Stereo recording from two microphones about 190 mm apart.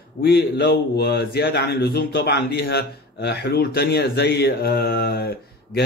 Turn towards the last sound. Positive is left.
turn(degrees=55)  # may be behind; listen again after turning